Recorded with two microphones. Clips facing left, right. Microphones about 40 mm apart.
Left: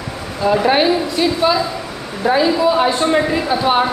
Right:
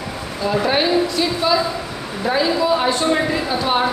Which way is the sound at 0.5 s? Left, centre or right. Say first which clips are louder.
Left 4 dB; centre.